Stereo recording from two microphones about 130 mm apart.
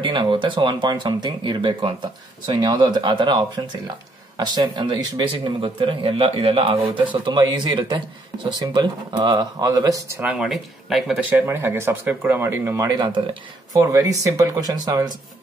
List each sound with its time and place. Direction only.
0.0 s speech: 40° right (ahead or behind); by 10.2 s 25° right (ahead or behind)
10.2 s speech: 5° right (ahead or behind)
11.3 s speech: 20° right (ahead or behind)
12.7 s speech: 35° right (ahead or behind)
13.7 s speech: 25° right (ahead or behind)